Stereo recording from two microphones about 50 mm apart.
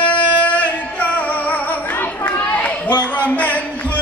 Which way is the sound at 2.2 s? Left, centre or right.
Left.